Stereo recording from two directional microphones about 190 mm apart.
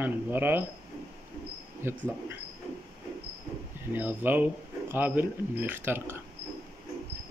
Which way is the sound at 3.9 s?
10° right (ahead or behind).